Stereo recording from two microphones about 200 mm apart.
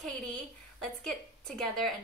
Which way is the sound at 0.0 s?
Centre (ahead or behind).